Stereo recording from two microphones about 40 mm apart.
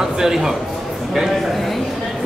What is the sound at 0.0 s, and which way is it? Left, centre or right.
Speech, centre.